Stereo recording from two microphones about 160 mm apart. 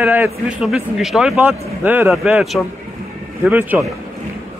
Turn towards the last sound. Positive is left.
turn(degrees=-10)  # may be behind; listen again after turning